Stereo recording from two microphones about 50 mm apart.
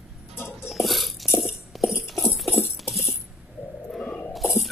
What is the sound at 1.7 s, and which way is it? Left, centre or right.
Music, centre.